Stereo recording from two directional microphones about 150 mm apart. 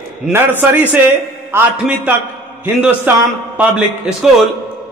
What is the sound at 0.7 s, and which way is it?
A man's voice, 10° right (ahead or behind).